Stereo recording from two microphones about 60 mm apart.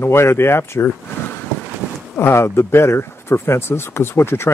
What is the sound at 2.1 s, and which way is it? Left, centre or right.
Speech, left.